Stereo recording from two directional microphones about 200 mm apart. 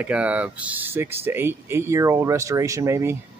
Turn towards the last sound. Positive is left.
turn(degrees=-15)  # may be behind; listen again after turning